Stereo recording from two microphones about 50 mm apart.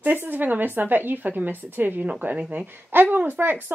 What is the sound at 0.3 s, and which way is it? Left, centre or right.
A woman's voice, right.